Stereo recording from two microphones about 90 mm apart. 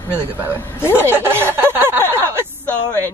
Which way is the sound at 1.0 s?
25° right (ahead or behind).